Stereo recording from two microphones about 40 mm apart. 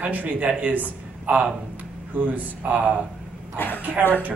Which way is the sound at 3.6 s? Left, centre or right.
Left.